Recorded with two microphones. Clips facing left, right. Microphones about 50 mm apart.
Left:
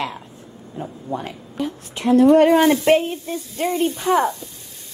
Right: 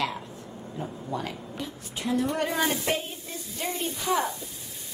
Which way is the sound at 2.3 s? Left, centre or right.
Left.